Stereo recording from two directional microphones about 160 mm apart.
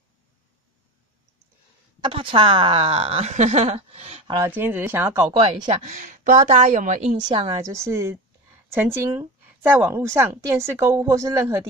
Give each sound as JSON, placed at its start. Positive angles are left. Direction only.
{"t": 2.0, "sound": "a woman's voice", "side_deg": -30}
{"t": 4.5, "sound": "speech", "side_deg": -10}
{"t": 5.7, "sound": "a woman's voice", "side_deg": -50}
{"t": 7.4, "sound": "a woman's voice", "side_deg": -20}